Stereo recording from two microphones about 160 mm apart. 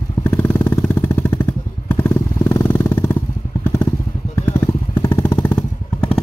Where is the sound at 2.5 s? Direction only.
15° left (ahead or behind).